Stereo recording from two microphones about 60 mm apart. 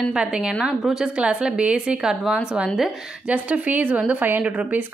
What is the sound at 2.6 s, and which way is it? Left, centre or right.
Speech, centre.